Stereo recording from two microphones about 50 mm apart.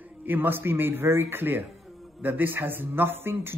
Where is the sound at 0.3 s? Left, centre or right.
Right.